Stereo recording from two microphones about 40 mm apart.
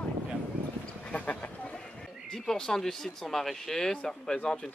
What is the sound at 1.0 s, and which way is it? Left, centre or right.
Speech, left.